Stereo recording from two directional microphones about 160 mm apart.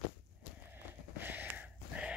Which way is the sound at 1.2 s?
10° right (ahead or behind).